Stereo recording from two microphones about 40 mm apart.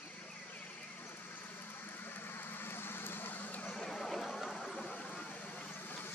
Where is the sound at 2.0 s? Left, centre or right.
Left.